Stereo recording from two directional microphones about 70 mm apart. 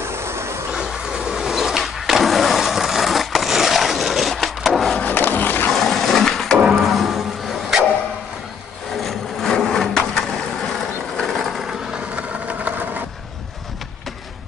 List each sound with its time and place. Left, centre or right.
0.0 s train: right
0.7 s vehicle: centre
5.0 s skateboard: left
5.7 s a sound: centre
6.7 s music: centre
9.0 s wood: centre
12.2 s a sound: right